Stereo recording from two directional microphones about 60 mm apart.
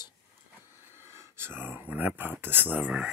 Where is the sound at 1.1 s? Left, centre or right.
Right.